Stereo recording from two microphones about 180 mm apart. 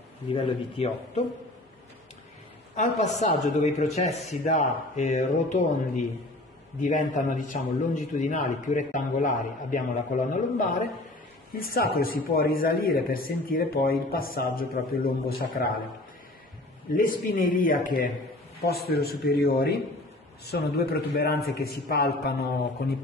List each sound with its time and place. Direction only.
0.3 s speech: 30° left (ahead or behind)
2.7 s a man's voice: 40° left (ahead or behind); by 15.7 s 55° left (ahead or behind)
16.9 s a man's voice: 50° left (ahead or behind)
18.7 s speech: 60° left (ahead or behind)